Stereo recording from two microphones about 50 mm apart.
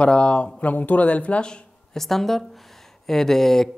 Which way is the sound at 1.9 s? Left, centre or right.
Centre.